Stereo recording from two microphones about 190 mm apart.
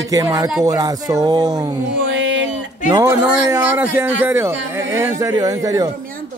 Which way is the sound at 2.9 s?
15° right (ahead or behind).